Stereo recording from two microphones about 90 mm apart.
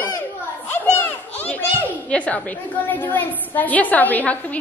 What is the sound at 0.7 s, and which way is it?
Children playing, 25° left (ahead or behind).